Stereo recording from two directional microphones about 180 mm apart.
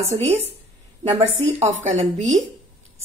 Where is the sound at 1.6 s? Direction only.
40° right (ahead or behind).